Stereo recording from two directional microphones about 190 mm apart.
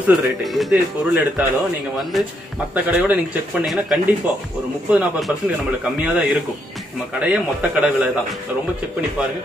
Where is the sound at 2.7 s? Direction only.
10° right (ahead or behind).